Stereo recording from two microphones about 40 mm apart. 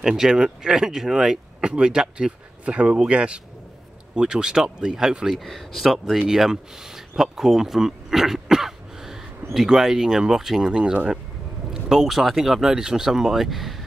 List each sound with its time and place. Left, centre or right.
0.0 s speech: centre
1.6 s speech: right
2.6 s speech: right
5.3 s speech: centre
6.3 s speech: centre
10.7 s speech: right
11.7 s speech: centre